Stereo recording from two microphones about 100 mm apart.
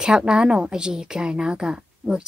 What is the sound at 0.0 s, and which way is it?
A woman's voice, 10° right (ahead or behind).